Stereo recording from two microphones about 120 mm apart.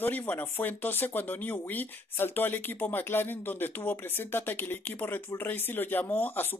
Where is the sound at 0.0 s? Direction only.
15° left (ahead or behind).